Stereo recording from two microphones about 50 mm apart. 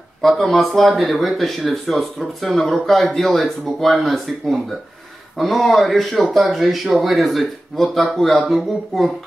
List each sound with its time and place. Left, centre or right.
0.2 s speech: centre